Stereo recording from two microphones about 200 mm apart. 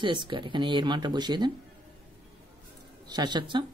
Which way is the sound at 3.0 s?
20° right (ahead or behind).